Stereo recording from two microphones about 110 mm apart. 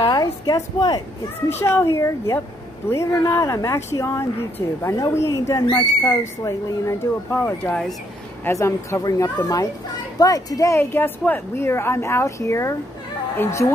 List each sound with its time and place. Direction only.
0.0 s a sound: 35° left (ahead or behind)
0.7 s speech: 40° left (ahead or behind)
1.6 s speech: 25° left (ahead or behind)
10.8 s speech: 20° left (ahead or behind)